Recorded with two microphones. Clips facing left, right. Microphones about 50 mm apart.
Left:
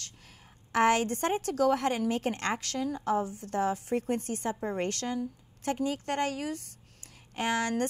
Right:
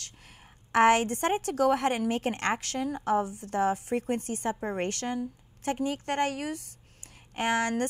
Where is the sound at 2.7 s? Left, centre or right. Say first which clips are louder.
Right 2 dB; right.